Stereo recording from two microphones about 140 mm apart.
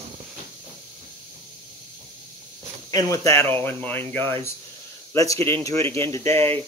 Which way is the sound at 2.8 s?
25° left (ahead or behind).